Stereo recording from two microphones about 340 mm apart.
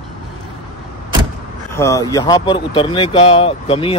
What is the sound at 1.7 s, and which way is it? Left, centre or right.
Speech, centre.